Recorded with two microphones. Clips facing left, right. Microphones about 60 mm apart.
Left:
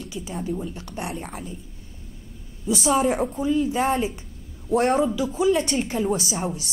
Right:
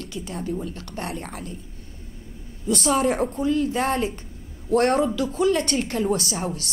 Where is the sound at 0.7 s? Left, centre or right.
Centre.